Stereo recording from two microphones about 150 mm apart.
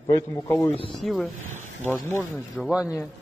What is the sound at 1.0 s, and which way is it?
Speech, centre (ahead or behind).